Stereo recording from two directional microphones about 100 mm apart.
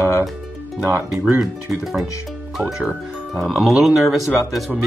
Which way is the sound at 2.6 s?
Centre (ahead or behind).